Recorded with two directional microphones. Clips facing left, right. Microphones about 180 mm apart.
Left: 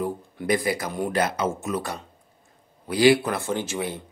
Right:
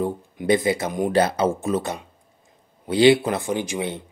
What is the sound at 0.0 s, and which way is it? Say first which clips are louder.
Speech: right 3 dB; 25° right (ahead or behind).